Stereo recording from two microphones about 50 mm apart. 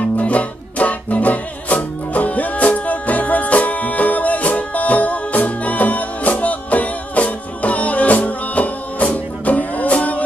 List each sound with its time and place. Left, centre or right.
0.2 s music: left